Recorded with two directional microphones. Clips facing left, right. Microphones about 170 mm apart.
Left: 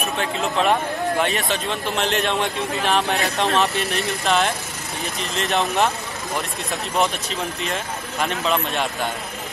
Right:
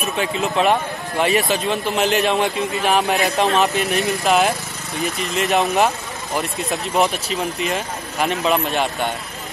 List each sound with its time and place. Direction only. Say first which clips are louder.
0.2 s speech: right 3 dB; 5° right (ahead or behind)
3.4 s a man's voice: right 1 dB; 40° right (ahead or behind)
4.1 s speech: right 3 dB; centre (ahead or behind)